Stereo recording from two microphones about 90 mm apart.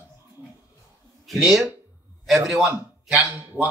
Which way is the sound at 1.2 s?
5° right (ahead or behind).